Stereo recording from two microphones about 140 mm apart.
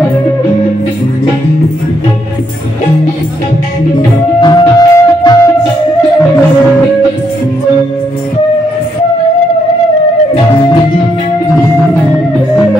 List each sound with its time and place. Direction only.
4.4 s music: 30° left (ahead or behind)